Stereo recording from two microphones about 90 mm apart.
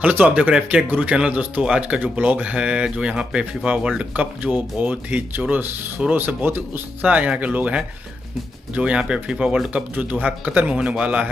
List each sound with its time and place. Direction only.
0.0 s speech: 20° right (ahead or behind)